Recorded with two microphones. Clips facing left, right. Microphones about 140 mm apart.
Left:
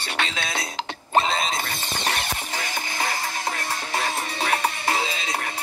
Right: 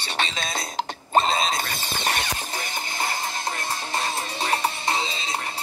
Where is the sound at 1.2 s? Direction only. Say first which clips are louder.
Right 1 dB; 60° left (ahead or behind).